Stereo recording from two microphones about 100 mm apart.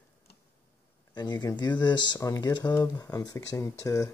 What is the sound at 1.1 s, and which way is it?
Speech, 45° left (ahead or behind).